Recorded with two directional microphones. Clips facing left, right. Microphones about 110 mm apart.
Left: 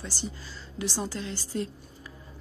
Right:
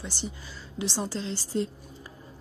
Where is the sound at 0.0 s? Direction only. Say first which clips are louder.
Even; 20° right (ahead or behind).